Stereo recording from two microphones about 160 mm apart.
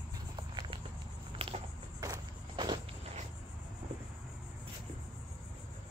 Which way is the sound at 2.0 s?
25° right (ahead or behind).